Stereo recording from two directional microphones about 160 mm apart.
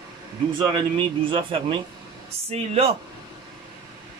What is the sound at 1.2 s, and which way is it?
Speech, 30° right (ahead or behind).